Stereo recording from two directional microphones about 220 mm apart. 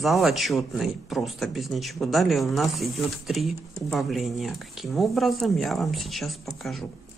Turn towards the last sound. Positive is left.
turn(degrees=0)  # may be behind; listen again after turning